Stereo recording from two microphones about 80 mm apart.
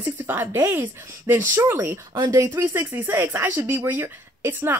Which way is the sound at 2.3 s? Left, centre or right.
Right.